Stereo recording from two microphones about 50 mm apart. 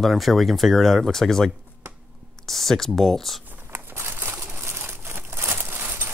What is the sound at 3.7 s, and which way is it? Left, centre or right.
Crumpling, right.